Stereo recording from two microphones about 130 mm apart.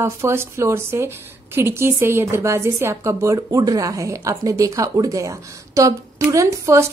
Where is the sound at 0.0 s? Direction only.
20° right (ahead or behind).